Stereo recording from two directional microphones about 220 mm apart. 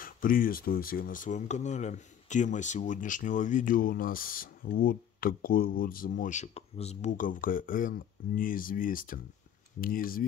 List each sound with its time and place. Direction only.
0.0 s speech: 40° left (ahead or behind)